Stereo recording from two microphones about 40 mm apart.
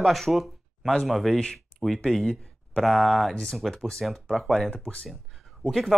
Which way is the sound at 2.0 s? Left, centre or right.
Centre.